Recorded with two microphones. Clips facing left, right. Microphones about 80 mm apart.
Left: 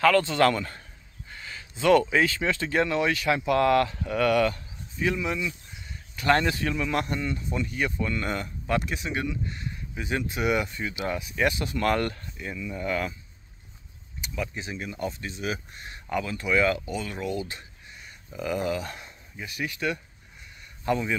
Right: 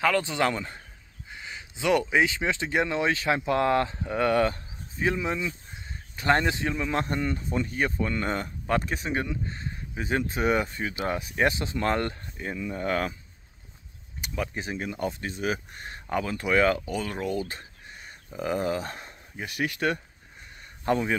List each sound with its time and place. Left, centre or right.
0.0 s a man's voice: centre; by 6.3 s right
6.3 s speech: right
12.4 s speech: right
14.2 s speech: right